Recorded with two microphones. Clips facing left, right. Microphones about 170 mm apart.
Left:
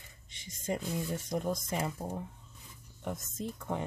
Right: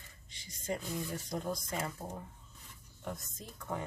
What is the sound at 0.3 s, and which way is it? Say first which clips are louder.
Speech: left 3 dB; 20° left (ahead or behind).